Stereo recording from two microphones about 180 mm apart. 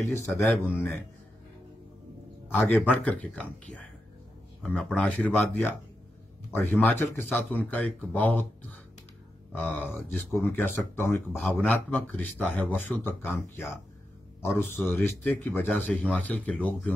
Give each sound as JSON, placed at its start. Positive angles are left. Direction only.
{"t": 0.7, "sound": "speech", "side_deg": 10}
{"t": 2.5, "sound": "a man's voice", "side_deg": 10}